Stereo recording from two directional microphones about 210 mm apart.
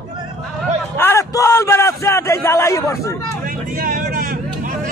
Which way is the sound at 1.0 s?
10° left (ahead or behind).